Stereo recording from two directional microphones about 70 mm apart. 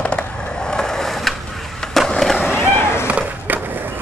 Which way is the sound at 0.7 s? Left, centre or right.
Centre.